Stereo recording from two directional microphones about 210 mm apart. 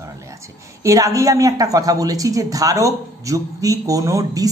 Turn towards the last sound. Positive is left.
turn(degrees=-15)  # may be behind; listen again after turning